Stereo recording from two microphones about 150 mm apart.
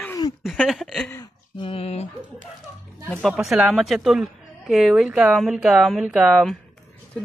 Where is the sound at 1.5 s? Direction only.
35° left (ahead or behind).